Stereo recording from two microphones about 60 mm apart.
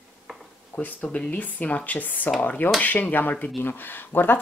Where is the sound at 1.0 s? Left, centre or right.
Centre.